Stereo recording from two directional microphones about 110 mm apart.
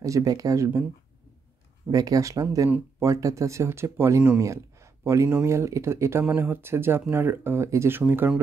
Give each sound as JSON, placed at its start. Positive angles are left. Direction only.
{"t": 0.0, "sound": "speech", "side_deg": -30}
{"t": 1.9, "sound": "speech", "side_deg": -35}